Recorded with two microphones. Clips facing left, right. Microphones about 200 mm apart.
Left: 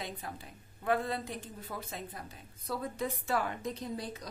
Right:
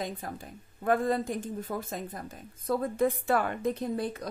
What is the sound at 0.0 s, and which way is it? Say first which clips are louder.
Speech: right 6 dB; 45° right (ahead or behind).